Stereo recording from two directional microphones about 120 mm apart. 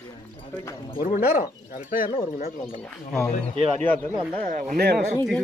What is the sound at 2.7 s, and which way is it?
Speech, 20° left (ahead or behind).